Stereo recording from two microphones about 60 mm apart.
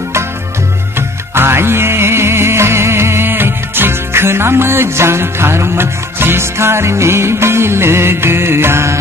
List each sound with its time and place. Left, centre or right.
0.9 s music: right